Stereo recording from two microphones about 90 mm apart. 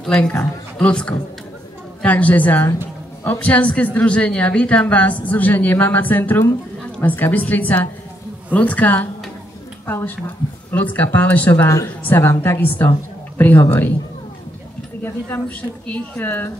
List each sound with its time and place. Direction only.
0.0 s a woman's voice: 10° left (ahead or behind)
11.6 s speech: 35° left (ahead or behind)
12.0 s a woman's voice: 25° left (ahead or behind)
15.0 s a woman's voice: 25° left (ahead or behind)